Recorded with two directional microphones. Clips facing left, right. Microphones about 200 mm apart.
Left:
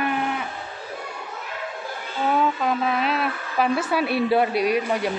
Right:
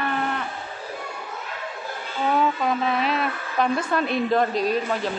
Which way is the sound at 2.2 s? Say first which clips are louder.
Even; centre (ahead or behind).